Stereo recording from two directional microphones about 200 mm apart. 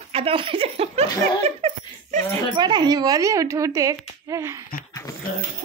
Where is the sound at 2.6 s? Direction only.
20° right (ahead or behind).